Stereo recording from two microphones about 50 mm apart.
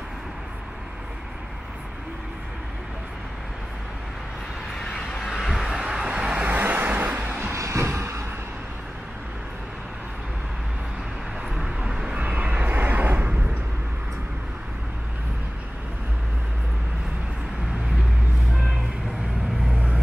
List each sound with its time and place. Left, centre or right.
5.3 s vehicle: centre
6.5 s vehicle: right
7.5 s music: right
11.6 s vehicle: centre
12.2 s vehicle: right
19.7 s vehicle: right